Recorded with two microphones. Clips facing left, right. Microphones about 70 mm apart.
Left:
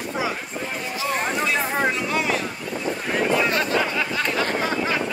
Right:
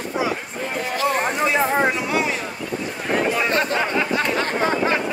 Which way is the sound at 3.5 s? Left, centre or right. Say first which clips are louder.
Right 2 dB; right.